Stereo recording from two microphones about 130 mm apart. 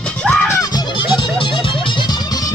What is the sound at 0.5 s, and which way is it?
Music, 25° left (ahead or behind).